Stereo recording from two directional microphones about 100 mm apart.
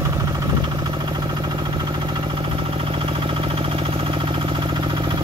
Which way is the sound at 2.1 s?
65° right (ahead or behind).